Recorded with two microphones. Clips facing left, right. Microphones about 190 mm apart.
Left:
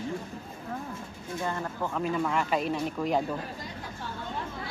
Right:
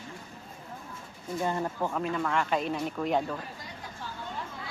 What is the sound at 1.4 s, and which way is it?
Speech, 15° right (ahead or behind).